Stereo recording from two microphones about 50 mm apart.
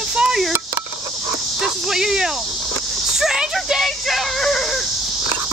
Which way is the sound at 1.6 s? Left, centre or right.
Centre.